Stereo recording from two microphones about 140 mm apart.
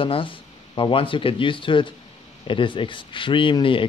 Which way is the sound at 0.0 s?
40° left (ahead or behind).